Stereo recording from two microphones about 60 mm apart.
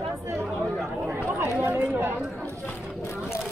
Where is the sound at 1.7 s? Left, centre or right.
Right.